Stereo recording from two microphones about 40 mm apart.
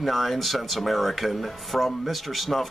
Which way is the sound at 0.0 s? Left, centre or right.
Centre.